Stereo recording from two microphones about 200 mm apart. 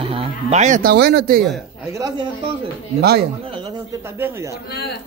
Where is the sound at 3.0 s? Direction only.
50° right (ahead or behind).